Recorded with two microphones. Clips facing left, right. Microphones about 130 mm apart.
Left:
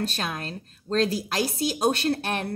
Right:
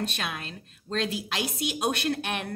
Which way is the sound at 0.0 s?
35° left (ahead or behind).